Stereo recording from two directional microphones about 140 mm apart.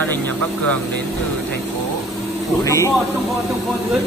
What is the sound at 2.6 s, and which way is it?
Speech, 20° left (ahead or behind).